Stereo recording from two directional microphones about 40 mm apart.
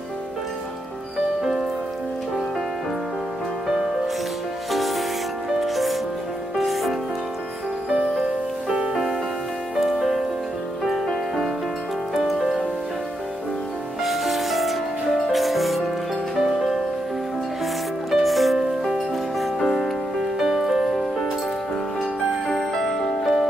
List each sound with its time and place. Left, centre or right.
1.4 s music: centre
4.6 s music: centre
7.9 s music: centre
14.0 s music: centre
18.1 s music: centre
19.4 s music: centre
20.3 s music: centre
22.5 s music: centre